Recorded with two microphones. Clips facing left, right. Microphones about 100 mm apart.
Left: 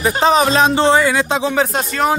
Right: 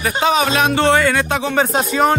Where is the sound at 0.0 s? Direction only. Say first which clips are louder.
Left 3 dB; 35° left (ahead or behind).